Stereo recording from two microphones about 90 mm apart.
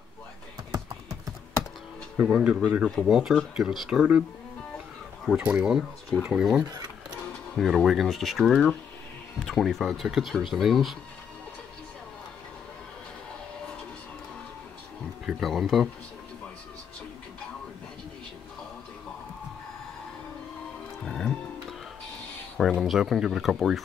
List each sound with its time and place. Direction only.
2.2 s speech: 10° right (ahead or behind)
5.4 s speech: 15° right (ahead or behind)
6.6 s speech: 45° right (ahead or behind)
7.5 s speech: centre (ahead or behind)
15.2 s speech: centre (ahead or behind)
21.0 s music: 5° left (ahead or behind)
22.6 s speech: centre (ahead or behind)